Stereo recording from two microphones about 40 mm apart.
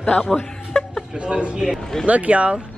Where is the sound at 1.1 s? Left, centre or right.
Right.